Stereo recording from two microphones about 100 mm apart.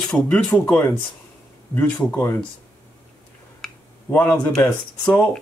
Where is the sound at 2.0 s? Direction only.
15° left (ahead or behind).